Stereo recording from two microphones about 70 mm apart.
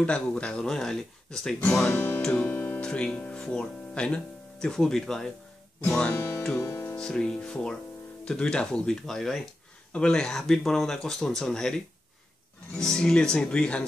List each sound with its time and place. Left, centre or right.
0.0 s speech: centre
1.9 s music: left
2.8 s speech: centre
6.1 s speech: left
6.5 s music: left
7.0 s speech: centre